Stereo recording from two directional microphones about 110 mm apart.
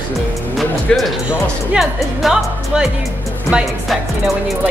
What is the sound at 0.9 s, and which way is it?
Speech, 5° left (ahead or behind).